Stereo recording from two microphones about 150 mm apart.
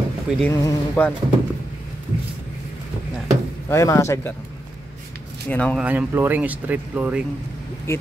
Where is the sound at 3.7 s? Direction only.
20° left (ahead or behind).